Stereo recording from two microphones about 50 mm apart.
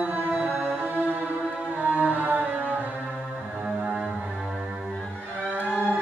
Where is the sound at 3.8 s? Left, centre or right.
Centre.